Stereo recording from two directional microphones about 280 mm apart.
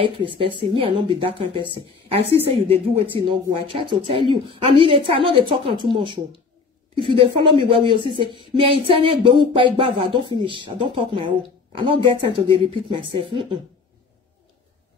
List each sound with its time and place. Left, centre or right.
0.0 s a woman's voice: centre